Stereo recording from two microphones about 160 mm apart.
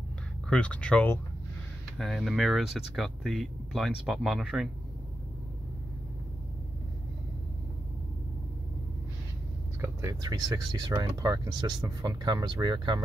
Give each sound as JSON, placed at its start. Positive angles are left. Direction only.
{"t": 0.5, "sound": "speech", "side_deg": 5}
{"t": 2.0, "sound": "speech", "side_deg": 0}
{"t": 9.8, "sound": "speech", "side_deg": -20}